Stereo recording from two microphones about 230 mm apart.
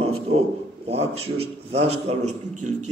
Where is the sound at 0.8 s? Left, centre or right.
Right.